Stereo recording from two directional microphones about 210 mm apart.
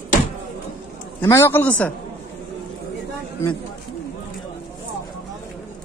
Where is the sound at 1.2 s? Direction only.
10° left (ahead or behind).